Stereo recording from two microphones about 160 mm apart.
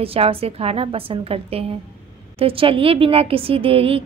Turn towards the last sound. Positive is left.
turn(degrees=-35)  # may be behind; listen again after turning